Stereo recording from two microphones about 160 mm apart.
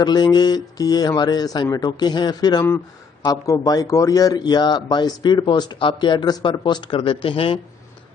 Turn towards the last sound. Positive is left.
turn(degrees=35)  # may be behind; listen again after turning